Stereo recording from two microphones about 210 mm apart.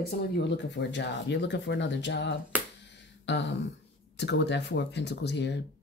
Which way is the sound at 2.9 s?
55° left (ahead or behind).